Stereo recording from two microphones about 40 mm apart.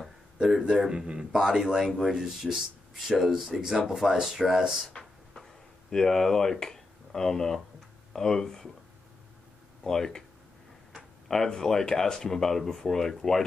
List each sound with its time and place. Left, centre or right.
0.0 s a sound: centre
0.7 s speech: centre
1.4 s speech: centre
4.9 s a sound: left
8.1 s speech: centre
9.8 s speech: centre
11.2 s speech: centre